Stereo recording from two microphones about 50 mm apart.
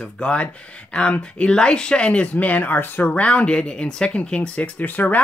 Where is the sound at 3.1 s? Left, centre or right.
Left.